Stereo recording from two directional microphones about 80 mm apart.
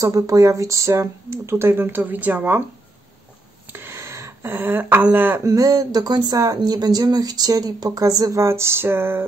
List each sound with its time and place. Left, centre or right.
0.0 s speech: right
3.7 s a sound: right
5.4 s speech: right